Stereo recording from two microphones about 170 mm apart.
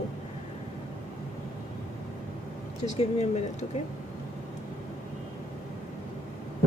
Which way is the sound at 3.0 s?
40° left (ahead or behind).